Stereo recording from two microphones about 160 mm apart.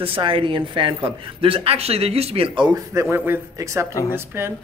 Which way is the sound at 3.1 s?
15° right (ahead or behind).